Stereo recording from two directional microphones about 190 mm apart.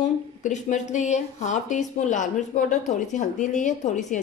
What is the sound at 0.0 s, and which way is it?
A woman's voice, 40° left (ahead or behind).